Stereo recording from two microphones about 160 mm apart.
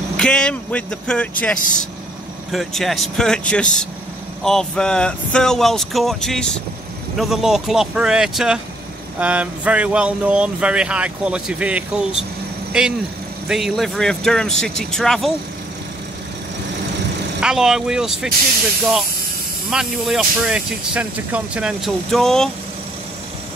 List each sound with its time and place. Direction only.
0.2 s speech: 5° left (ahead or behind)
17.4 s speech: 5° right (ahead or behind)
19.7 s speech: centre (ahead or behind)